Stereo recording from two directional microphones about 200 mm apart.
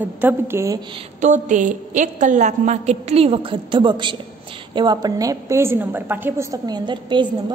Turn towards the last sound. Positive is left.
turn(degrees=-25)  # may be behind; listen again after turning